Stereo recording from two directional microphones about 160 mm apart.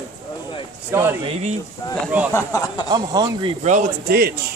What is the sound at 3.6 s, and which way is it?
Speech, 65° right (ahead or behind).